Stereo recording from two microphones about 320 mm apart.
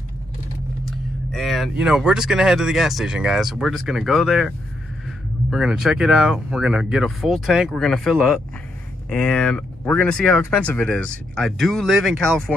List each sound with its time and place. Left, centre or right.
0.8 s speech: centre